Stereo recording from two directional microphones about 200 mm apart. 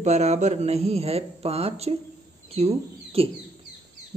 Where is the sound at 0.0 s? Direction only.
35° right (ahead or behind).